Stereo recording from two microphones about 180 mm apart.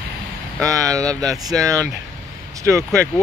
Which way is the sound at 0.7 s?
20° right (ahead or behind).